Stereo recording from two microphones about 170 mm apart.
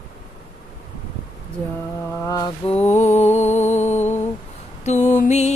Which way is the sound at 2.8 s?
45° left (ahead or behind).